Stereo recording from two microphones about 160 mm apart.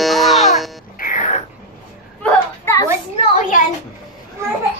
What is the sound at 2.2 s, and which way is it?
Children playing, 10° left (ahead or behind).